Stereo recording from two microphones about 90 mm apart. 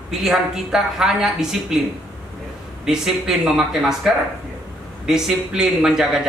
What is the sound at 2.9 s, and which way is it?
Speech, 5° right (ahead or behind).